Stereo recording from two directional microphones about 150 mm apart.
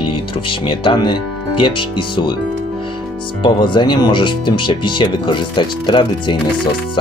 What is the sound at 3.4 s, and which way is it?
Speech, 30° left (ahead or behind).